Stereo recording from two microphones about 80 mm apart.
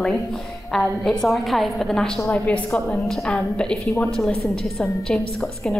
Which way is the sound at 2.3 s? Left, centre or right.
Centre.